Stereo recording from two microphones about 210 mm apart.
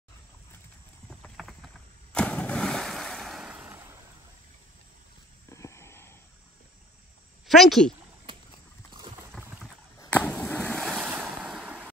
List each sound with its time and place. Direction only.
1.2 s clip-clop: centre (ahead or behind)
2.1 s boat: 5° left (ahead or behind); by 4.0 s 10° right (ahead or behind)
5.5 s a sound: 15° left (ahead or behind)
7.4 s speech: centre (ahead or behind)
8.3 s clip-clop: 25° right (ahead or behind)
9.4 s a sound: 10° right (ahead or behind)
9.9 s ocean: 5° left (ahead or behind)